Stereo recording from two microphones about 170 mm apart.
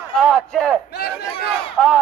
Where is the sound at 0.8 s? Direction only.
70° left (ahead or behind).